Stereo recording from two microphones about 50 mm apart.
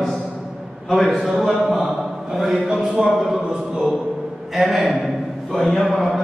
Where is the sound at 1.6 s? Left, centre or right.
Centre.